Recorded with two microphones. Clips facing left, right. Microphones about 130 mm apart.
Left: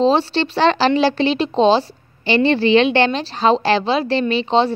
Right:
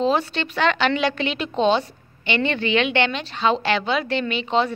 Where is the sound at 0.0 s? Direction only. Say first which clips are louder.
Left 6 dB; 30° left (ahead or behind).